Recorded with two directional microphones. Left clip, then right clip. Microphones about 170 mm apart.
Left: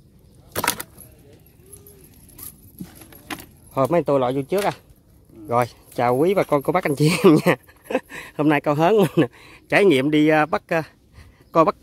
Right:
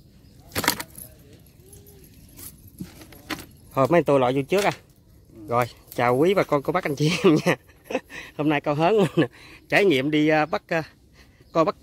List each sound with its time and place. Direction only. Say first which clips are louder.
3.7 s speech: even; centre (ahead or behind)
5.5 s speech: left 3 dB; 25° left (ahead or behind)
5.9 s speech: left 1 dB; 15° left (ahead or behind)
6.5 s speech: left 3 dB; 30° left (ahead or behind)